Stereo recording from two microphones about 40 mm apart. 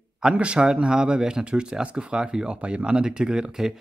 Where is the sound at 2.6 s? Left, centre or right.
Right.